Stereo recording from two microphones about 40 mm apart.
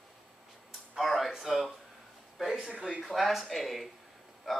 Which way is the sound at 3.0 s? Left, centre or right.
Centre.